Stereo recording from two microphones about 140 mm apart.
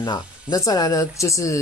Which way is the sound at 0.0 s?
30° left (ahead or behind).